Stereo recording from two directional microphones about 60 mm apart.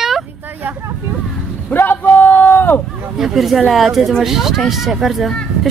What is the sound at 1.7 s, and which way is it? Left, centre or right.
A man's voice, left.